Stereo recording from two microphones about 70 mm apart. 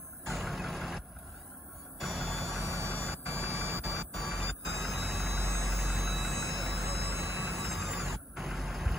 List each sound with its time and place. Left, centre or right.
0.3 s vehicle: centre
2.0 s music: centre
2.7 s vehicle: right
3.0 s vehicle: centre
3.9 s a sound: centre
5.5 s music: centre
7.2 s a sound: centre
7.5 s vehicle: centre